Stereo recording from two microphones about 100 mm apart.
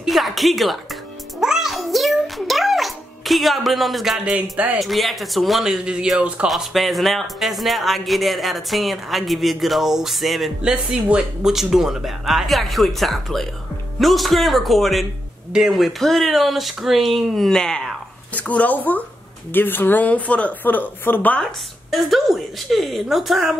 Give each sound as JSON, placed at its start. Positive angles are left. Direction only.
{"t": 0.0, "sound": "music", "side_deg": 0}
{"t": 4.7, "sound": "a man's voice", "side_deg": 0}
{"t": 6.5, "sound": "a man's voice", "side_deg": 0}
{"t": 21.5, "sound": "a man's voice", "side_deg": 0}